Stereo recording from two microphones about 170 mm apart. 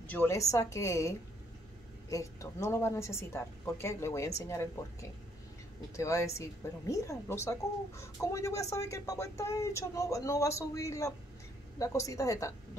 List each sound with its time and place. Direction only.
0.0 s speech: 10° left (ahead or behind)
5.9 s speech: 20° left (ahead or behind)